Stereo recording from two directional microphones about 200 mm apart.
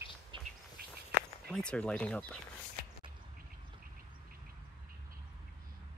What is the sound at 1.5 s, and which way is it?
Speech, 5° left (ahead or behind).